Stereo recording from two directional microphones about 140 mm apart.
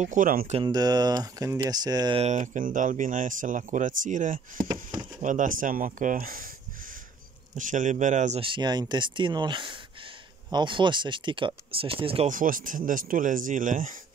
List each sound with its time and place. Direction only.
0.0 s speech: 70° right (ahead or behind)
0.7 s speech: 30° right (ahead or behind)
2.1 s speech: 55° right (ahead or behind); by 6.5 s 90° right
7.5 s speech: 65° right (ahead or behind)
8.4 s speech: 35° right (ahead or behind)
12.3 s speech: 80° right